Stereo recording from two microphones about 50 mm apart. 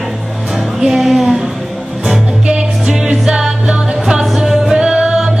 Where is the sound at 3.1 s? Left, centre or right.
Centre.